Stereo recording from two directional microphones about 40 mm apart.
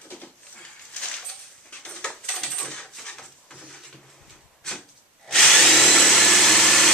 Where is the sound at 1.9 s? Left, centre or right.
Centre.